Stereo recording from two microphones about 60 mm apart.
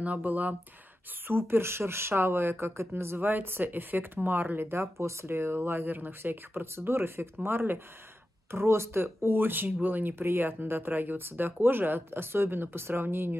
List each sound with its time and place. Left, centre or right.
0.0 s speech: right
1.2 s speech: right